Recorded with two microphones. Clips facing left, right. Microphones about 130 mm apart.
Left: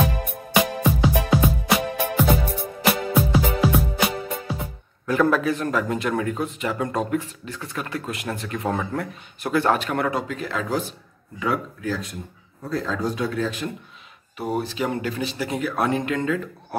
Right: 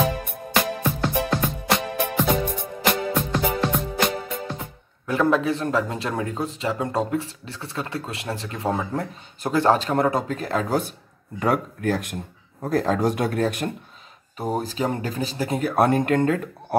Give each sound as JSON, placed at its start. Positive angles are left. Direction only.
{"t": 0.0, "sound": "music", "side_deg": 5}
{"t": 5.0, "sound": "speech", "side_deg": -25}
{"t": 14.3, "sound": "speech", "side_deg": -40}